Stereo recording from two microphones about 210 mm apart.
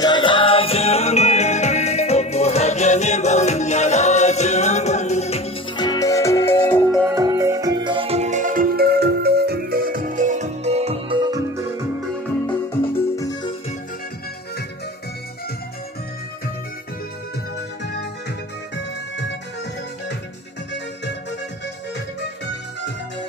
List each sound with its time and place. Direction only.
0.0 s music: 20° left (ahead or behind)
7.2 s music: 15° right (ahead or behind)
13.1 s music: 15° left (ahead or behind)
18.8 s music: 60° left (ahead or behind)
20.7 s music: 55° left (ahead or behind)